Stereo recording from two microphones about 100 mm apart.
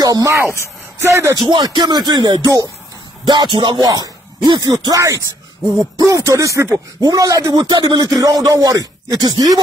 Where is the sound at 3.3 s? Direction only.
50° right (ahead or behind).